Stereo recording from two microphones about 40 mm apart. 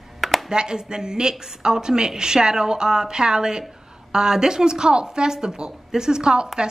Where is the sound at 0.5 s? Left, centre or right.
Centre.